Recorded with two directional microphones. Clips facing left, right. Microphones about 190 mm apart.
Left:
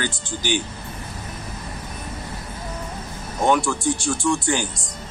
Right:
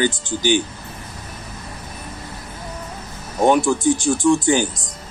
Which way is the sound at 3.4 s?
20° right (ahead or behind).